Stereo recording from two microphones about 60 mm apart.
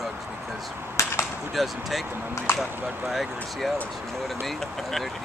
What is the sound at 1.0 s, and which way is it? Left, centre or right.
Whip, left.